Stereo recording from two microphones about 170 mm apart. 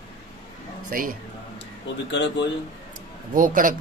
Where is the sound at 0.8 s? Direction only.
55° right (ahead or behind).